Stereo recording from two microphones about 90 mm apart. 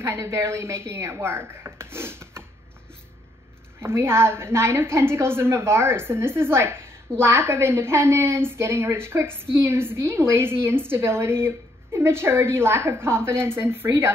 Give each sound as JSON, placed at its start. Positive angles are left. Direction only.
{"t": 0.0, "sound": "a woman's voice", "side_deg": -30}
{"t": 3.8, "sound": "a woman's voice", "side_deg": -30}